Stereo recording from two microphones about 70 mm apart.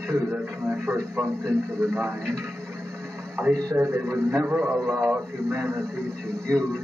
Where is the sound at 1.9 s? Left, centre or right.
Right.